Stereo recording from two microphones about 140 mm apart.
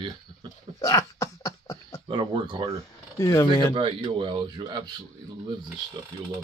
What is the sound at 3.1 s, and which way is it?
Speech, 20° left (ahead or behind).